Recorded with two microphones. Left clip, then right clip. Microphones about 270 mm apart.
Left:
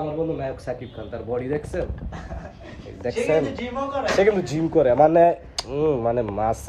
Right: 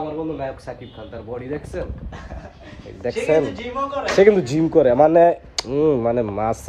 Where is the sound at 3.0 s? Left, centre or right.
Right.